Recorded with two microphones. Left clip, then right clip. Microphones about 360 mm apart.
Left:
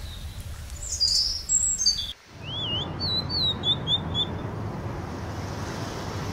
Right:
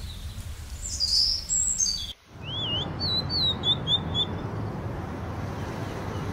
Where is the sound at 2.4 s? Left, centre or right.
Centre.